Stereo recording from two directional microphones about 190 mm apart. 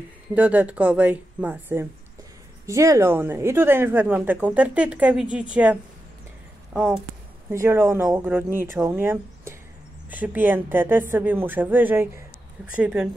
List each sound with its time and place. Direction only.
0.3 s a woman's voice: 10° right (ahead or behind)